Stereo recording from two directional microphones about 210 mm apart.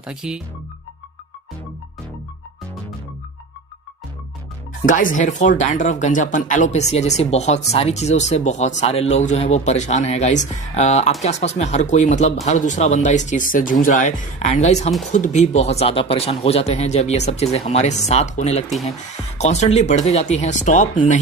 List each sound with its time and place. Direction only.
0.0 s speech: 5° right (ahead or behind)
4.8 s speech: 40° left (ahead or behind)